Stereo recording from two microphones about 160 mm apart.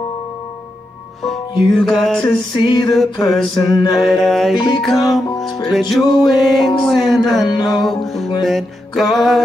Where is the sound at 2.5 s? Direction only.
30° left (ahead or behind).